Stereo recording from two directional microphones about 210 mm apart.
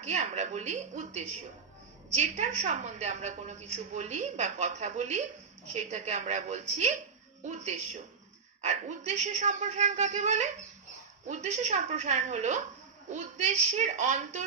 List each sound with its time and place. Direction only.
0.0 s a woman's voice: 35° right (ahead or behind)